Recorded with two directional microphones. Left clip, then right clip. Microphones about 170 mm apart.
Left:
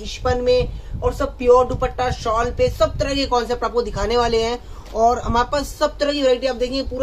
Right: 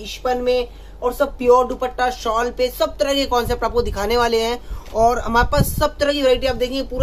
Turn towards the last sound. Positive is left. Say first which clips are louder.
# right 1 dB
turn(degrees=-5)  # may be behind; listen again after turning